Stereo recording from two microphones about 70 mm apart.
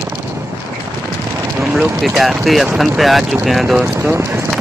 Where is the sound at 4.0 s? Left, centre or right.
Right.